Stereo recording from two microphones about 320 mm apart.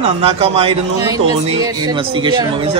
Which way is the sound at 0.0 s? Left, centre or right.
Centre.